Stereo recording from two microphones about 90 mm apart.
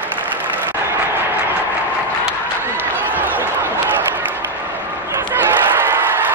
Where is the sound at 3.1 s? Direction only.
20° right (ahead or behind).